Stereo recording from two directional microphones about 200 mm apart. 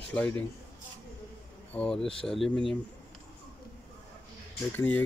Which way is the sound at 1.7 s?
5° left (ahead or behind).